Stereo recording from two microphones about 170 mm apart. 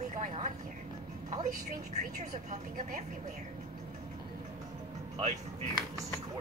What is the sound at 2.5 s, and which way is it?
Speech, 50° right (ahead or behind).